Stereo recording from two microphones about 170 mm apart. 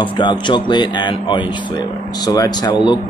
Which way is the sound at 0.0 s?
25° left (ahead or behind).